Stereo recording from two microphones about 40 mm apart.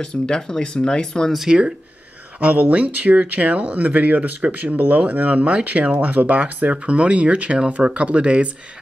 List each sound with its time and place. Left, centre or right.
0.0 s speech: centre
2.4 s speech: right
4.4 s speech: right
4.7 s speech: right
5.0 s speech: right